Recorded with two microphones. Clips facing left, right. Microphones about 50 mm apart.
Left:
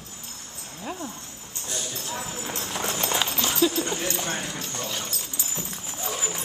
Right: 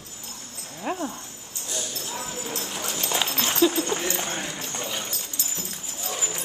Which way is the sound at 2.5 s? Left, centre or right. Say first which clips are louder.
Left 4 dB; left.